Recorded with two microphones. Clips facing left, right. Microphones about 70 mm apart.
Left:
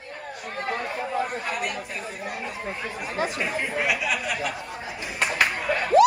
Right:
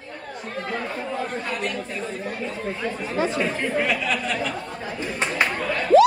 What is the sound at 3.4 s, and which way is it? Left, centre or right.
Chatter, centre.